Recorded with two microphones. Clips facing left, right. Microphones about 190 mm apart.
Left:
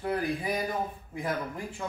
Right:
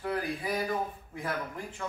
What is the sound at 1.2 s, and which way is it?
Speech, 15° left (ahead or behind).